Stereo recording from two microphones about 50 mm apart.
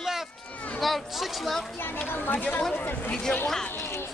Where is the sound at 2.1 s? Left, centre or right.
Left.